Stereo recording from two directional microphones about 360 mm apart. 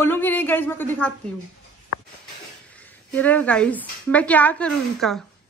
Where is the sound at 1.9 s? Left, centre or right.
Left.